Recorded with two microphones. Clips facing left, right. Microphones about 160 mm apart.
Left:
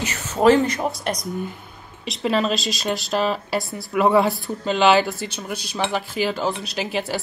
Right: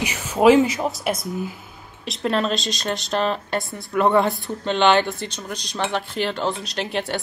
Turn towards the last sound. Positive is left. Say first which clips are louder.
# even
turn(degrees=5)  # may be behind; listen again after turning